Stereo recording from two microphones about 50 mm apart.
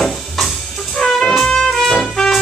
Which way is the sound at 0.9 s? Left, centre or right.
Centre.